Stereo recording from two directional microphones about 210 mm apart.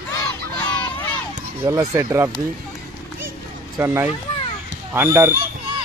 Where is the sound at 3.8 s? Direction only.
10° right (ahead or behind).